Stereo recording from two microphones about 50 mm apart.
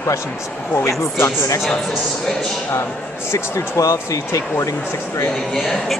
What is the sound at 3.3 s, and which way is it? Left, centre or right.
Speech, left.